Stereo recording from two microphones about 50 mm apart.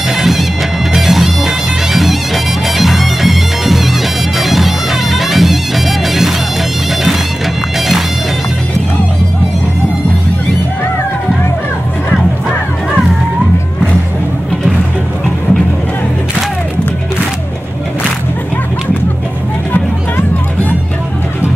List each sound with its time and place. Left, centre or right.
0.2 s music: centre
4.4 s bagpipes: centre